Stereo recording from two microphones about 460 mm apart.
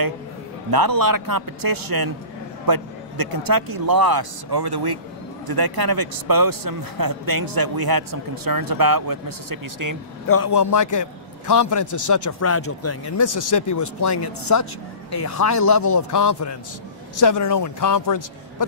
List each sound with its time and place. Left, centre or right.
0.7 s a man's voice: right
10.2 s a man's voice: left